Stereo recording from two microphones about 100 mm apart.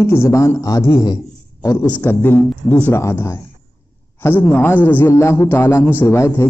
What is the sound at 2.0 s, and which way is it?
A man's voice, 20° left (ahead or behind).